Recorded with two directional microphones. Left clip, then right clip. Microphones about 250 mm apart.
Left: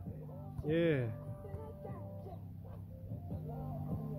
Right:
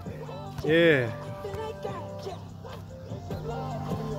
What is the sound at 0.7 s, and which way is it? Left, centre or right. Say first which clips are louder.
Speech: right 12 dB; centre.